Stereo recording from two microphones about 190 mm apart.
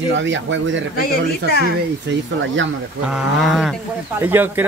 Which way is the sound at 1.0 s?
50° left (ahead or behind).